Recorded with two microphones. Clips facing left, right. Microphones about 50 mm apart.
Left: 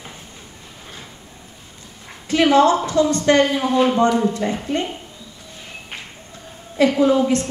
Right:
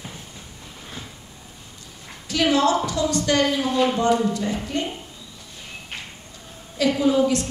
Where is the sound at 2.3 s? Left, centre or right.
Left.